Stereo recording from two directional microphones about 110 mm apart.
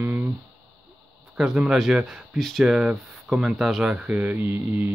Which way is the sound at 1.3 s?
5° right (ahead or behind).